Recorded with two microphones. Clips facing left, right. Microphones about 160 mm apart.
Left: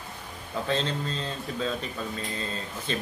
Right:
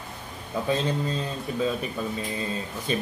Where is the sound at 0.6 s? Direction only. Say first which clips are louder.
Right 3 dB; 10° right (ahead or behind).